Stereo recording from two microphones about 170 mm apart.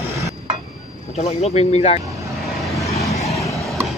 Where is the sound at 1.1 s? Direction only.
40° left (ahead or behind).